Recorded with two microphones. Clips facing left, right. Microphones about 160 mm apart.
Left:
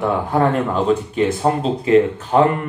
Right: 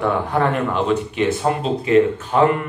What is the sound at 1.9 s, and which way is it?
Speech, 35° left (ahead or behind).